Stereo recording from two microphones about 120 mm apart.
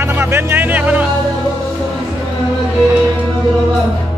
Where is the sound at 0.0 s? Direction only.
20° right (ahead or behind).